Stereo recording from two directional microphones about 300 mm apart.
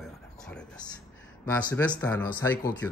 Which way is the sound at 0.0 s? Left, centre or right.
Centre.